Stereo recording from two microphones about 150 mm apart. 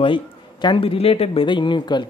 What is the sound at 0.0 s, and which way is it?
Speech, 30° left (ahead or behind).